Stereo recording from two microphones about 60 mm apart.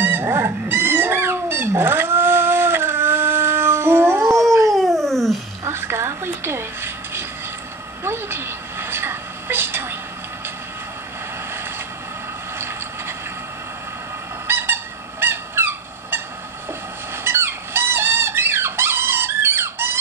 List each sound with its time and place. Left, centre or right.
0.0 s cat: right
4.6 s dog: centre
5.7 s a sound: right
14.5 s honk: right
17.2 s squeak: right